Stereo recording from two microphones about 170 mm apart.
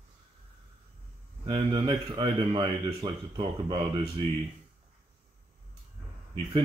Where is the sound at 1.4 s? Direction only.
30° right (ahead or behind).